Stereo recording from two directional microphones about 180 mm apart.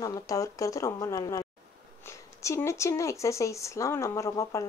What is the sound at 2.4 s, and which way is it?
A woman's voice, 15° left (ahead or behind).